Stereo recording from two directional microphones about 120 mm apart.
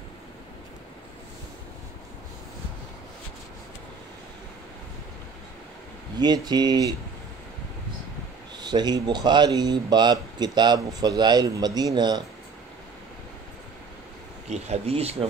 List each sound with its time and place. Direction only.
6.1 s speech: 35° right (ahead or behind)
8.5 s speech: 35° right (ahead or behind)
14.5 s speech: 60° right (ahead or behind)